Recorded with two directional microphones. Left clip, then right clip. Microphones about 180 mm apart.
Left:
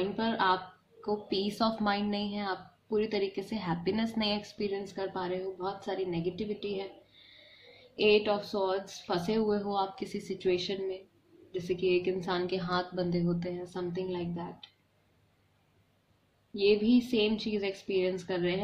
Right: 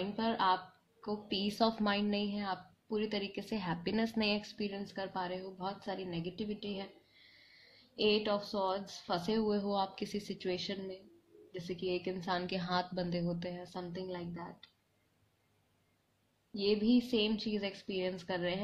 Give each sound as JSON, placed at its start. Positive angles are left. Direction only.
{"t": 0.1, "sound": "a woman's voice", "side_deg": -25}
{"t": 8.0, "sound": "a woman's voice", "side_deg": -35}
{"t": 12.2, "sound": "a woman's voice", "side_deg": -35}
{"t": 16.6, "sound": "a woman's voice", "side_deg": -30}